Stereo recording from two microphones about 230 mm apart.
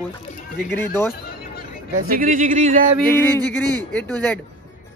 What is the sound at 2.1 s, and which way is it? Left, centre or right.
Speech, right.